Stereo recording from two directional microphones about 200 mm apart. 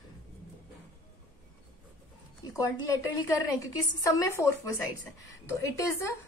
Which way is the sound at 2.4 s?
20° left (ahead or behind).